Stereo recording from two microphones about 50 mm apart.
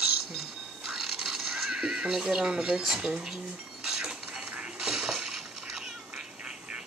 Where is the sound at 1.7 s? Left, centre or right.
Centre.